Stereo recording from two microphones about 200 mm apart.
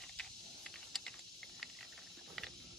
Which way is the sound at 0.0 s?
Centre (ahead or behind).